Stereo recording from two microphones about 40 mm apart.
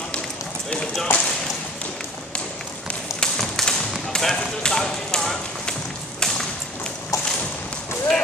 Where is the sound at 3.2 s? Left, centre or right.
Centre.